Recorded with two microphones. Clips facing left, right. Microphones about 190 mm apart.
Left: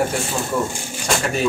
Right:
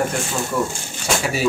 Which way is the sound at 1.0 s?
Centre (ahead or behind).